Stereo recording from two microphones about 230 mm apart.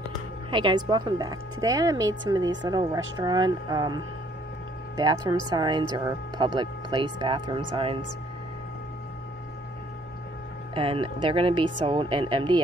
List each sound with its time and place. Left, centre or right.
0.5 s speech: centre
10.7 s speech: right